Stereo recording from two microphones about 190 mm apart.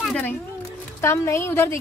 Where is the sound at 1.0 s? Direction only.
15° left (ahead or behind).